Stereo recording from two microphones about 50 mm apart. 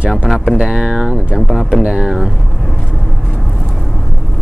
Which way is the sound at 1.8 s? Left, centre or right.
Right.